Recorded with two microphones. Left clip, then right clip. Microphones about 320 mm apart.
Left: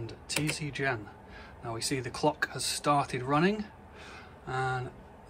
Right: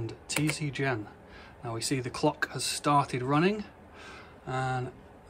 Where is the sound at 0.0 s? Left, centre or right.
Centre.